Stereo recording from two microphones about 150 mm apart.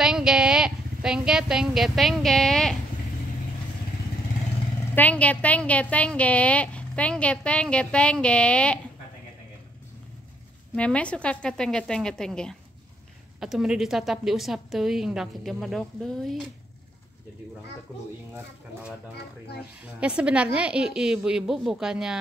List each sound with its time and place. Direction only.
0.0 s a woman's voice: 5° right (ahead or behind)
4.9 s a woman's voice: 10° left (ahead or behind)
10.8 s a woman's voice: 10° left (ahead or behind)
19.4 s speech: 90° left
19.8 s a woman's voice: 5° right (ahead or behind)